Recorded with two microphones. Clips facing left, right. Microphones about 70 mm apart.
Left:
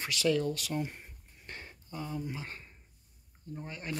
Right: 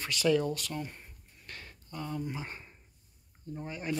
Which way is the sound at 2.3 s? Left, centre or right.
Centre.